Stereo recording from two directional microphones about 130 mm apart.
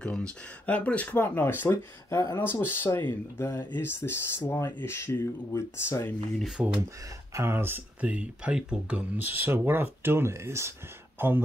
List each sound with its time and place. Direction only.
0.0 s speech: 10° left (ahead or behind)
6.4 s speech: 5° right (ahead or behind)
7.3 s speech: 20° right (ahead or behind)